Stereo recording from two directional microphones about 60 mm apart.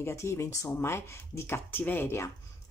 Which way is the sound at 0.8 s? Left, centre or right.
Left.